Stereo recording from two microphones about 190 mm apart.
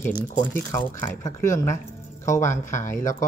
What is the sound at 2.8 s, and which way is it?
Speech, 40° left (ahead or behind).